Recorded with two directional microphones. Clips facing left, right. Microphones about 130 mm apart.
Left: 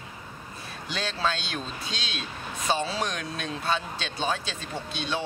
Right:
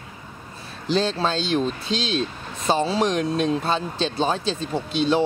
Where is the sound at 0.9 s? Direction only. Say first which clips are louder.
Right 8 dB; 30° right (ahead or behind).